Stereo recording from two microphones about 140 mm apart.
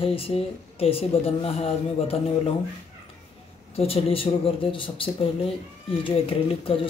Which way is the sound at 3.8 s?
40° left (ahead or behind).